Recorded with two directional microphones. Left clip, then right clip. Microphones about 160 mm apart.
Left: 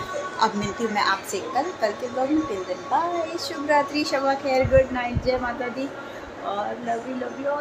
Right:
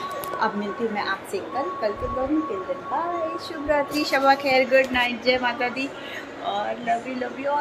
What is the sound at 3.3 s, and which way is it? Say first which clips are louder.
A woman's voice: left 4 dB; 5° left (ahead or behind).